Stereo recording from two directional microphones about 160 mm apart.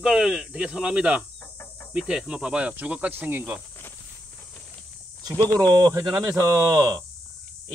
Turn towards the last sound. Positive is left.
turn(degrees=-20)  # may be behind; listen again after turning